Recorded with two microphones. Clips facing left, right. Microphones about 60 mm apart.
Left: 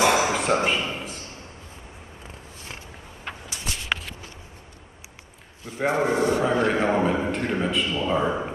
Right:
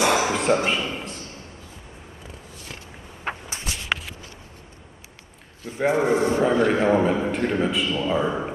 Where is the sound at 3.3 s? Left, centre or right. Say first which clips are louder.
Right 6 dB; right.